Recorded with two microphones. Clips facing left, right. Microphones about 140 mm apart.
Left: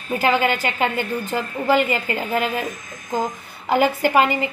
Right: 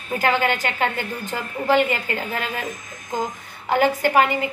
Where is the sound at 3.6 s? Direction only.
10° left (ahead or behind).